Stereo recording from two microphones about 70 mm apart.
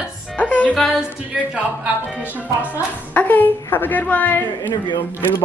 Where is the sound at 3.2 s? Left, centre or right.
Left.